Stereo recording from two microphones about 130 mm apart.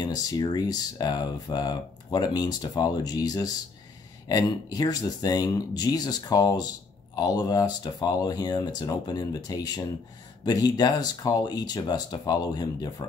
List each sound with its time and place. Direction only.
0.0 s speech: 30° left (ahead or behind)